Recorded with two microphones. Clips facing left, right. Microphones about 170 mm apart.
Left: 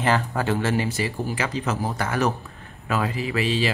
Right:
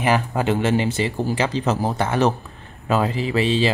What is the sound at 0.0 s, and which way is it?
Speech, 15° right (ahead or behind).